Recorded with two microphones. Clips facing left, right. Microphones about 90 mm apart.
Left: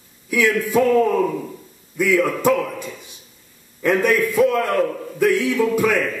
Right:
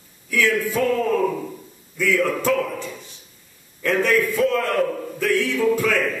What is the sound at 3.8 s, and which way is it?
A man's voice, 15° left (ahead or behind).